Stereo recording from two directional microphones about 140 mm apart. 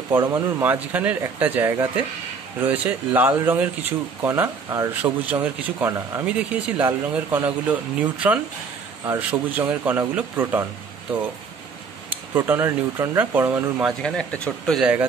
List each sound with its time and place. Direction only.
0.3 s speech: 15° right (ahead or behind)
6.2 s speech: 10° right (ahead or behind)
12.1 s speech: 15° right (ahead or behind)
14.0 s speech: 5° left (ahead or behind)
14.8 s speech: 10° right (ahead or behind)